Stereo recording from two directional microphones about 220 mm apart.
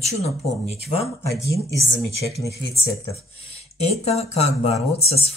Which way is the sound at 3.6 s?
30° left (ahead or behind).